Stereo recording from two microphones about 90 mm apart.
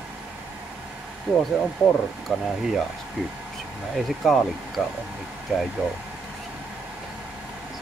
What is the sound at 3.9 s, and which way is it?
Speech, centre (ahead or behind).